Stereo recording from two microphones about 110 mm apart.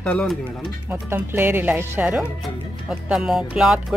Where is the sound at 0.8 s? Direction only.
20° right (ahead or behind).